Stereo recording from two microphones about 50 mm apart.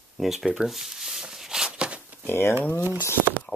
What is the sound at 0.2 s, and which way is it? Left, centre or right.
Speech, centre.